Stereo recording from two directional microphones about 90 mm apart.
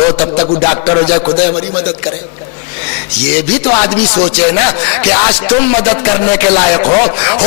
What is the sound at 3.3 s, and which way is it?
Speech, 15° left (ahead or behind).